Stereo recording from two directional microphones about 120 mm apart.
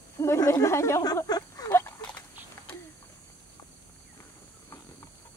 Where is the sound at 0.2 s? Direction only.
25° left (ahead or behind).